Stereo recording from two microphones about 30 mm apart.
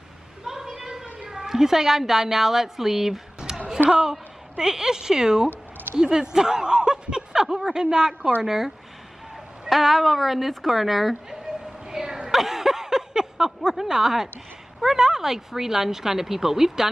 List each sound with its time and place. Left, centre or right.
0.5 s a sound: centre
1.3 s speech: centre
3.5 s music: centre
4.0 s a woman's voice: centre
5.9 s a sound: right
7.4 s speech: centre
7.7 s a woman's voice: right
8.4 s speech: centre
9.7 s speech: centre
11.9 s a sound: centre
12.3 s a sound: centre
13.7 s speech: centre